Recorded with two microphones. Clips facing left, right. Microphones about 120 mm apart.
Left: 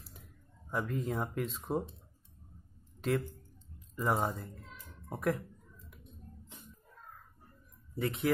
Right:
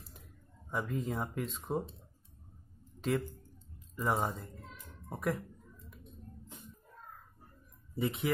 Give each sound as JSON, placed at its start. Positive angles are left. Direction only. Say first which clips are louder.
{"t": 0.7, "sound": "speech", "louder": "left 1 dB", "side_deg": 0}
{"t": 3.0, "sound": "speech", "louder": "left 1 dB", "side_deg": 0}
{"t": 7.9, "sound": "speech", "louder": "even", "side_deg": 0}